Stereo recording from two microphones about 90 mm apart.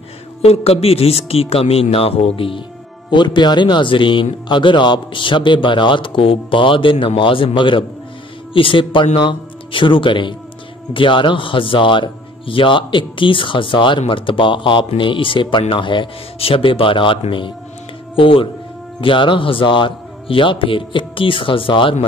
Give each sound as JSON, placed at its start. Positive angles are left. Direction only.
{"t": 0.4, "sound": "speech", "side_deg": 90}
{"t": 3.1, "sound": "a man's voice", "side_deg": 60}
{"t": 18.1, "sound": "a man's voice", "side_deg": 80}